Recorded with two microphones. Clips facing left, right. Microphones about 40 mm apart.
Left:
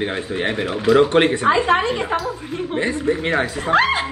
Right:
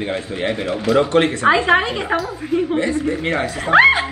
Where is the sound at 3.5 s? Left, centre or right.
Right.